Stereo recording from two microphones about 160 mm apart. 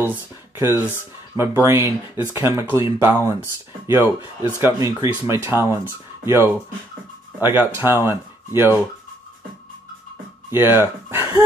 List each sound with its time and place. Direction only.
0.0 s speech: 15° right (ahead or behind)
10.5 s speech: 15° right (ahead or behind)